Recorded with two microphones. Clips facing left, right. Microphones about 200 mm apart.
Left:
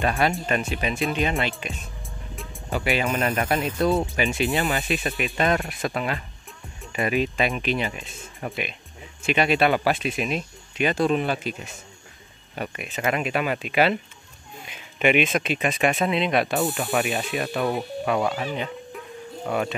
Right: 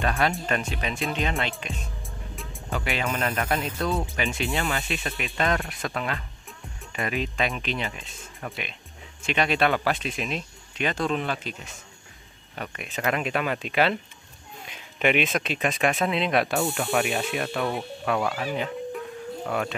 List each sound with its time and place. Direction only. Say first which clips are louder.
0.0 s speech: left 2 dB; 15° left (ahead or behind)
4.8 s speech: left 5 dB; 10° left (ahead or behind)
19.4 s speech: left 3 dB; 5° left (ahead or behind)